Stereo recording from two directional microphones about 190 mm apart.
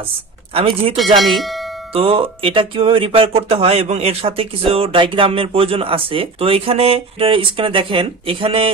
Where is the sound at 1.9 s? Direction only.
30° right (ahead or behind).